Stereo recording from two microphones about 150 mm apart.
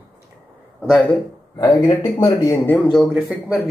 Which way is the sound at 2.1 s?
20° left (ahead or behind).